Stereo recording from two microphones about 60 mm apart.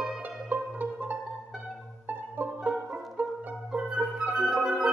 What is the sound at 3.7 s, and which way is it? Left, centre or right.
Music, right.